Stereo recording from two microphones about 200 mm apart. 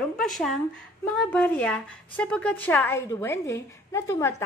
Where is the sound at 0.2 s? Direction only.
Centre (ahead or behind).